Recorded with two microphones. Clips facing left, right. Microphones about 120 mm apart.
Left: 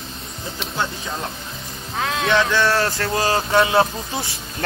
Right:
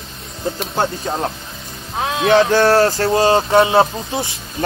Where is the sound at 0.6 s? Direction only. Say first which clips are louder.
Right 4 dB; 50° right (ahead or behind).